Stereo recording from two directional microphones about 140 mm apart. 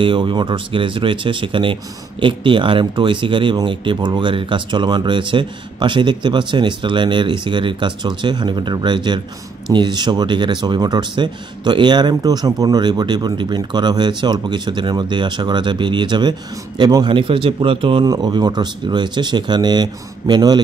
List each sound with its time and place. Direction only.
0.0 s speech: 35° right (ahead or behind)